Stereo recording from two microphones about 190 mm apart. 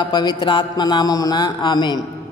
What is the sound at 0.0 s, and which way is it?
A man's voice, 20° left (ahead or behind).